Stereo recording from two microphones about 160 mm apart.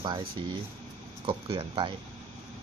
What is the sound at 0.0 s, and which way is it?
Speech, 30° right (ahead or behind).